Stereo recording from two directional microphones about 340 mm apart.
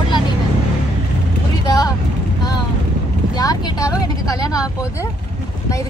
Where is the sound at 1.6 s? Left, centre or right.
Centre.